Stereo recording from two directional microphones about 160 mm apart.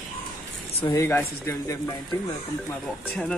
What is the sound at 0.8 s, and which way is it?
Speech, 20° left (ahead or behind).